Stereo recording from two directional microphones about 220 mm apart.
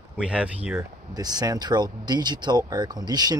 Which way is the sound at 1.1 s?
20° right (ahead or behind).